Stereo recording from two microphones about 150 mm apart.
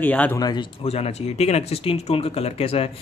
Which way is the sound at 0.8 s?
45° left (ahead or behind).